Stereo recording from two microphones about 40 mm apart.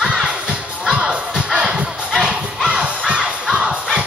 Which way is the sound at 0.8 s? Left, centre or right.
Centre.